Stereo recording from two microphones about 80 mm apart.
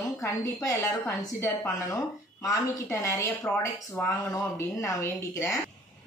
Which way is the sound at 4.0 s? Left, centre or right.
Centre.